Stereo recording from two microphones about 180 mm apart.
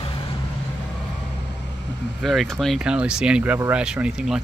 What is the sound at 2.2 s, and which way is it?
Speech, centre (ahead or behind).